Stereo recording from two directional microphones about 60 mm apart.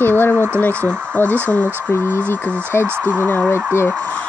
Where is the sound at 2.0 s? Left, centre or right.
Right.